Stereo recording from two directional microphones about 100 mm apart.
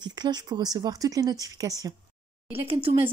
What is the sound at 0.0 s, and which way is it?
Speech, 45° right (ahead or behind).